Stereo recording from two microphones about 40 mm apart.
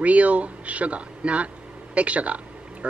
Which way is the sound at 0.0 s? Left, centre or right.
Right.